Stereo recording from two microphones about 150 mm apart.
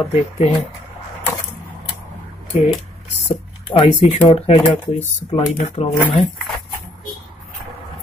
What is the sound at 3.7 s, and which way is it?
Speech, 35° left (ahead or behind).